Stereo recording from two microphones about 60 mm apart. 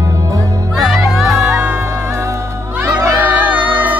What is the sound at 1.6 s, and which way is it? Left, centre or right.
Music, right.